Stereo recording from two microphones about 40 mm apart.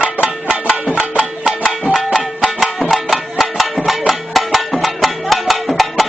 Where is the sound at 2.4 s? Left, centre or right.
Centre.